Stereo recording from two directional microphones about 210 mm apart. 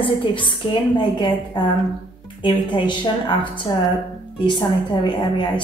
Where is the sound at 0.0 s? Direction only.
25° left (ahead or behind).